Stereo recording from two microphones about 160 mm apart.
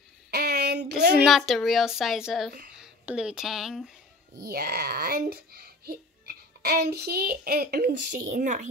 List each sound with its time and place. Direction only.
0.3 s a sound: 85° right
1.1 s a woman's voice: centre (ahead or behind)
4.4 s a child's voice: 75° right (ahead or behind); by 8.6 s 50° right (ahead or behind)